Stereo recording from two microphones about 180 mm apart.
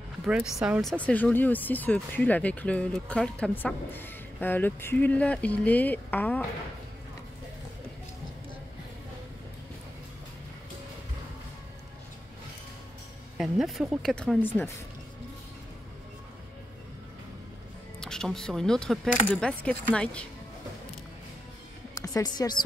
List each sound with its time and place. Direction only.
0.2 s speech: 5° right (ahead or behind)
13.4 s speech: centre (ahead or behind)
18.0 s speech: 5° left (ahead or behind)
21.9 s a woman's voice: 20° left (ahead or behind)